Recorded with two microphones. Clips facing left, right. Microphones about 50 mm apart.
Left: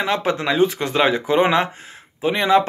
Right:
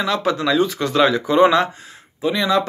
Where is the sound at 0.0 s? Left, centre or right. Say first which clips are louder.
Right 1 dB; left.